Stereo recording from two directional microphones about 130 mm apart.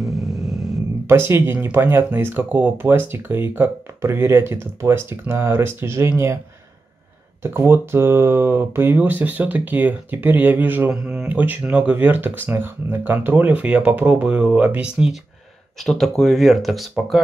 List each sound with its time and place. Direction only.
1.0 s speech: 20° right (ahead or behind)
7.4 s speech: 20° right (ahead or behind); by 17.2 s centre (ahead or behind)